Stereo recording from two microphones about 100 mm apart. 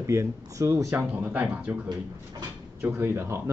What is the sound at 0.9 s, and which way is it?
Speech, 15° right (ahead or behind).